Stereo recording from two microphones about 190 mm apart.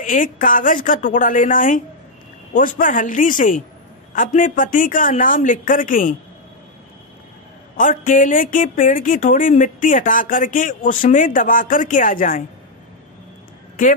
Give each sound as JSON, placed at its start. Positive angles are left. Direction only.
{"t": 0.0, "sound": "a woman's voice", "side_deg": 45}
{"t": 7.7, "sound": "a woman's voice", "side_deg": 45}